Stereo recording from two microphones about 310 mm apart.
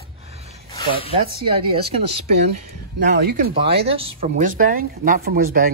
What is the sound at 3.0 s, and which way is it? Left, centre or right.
Speech, right.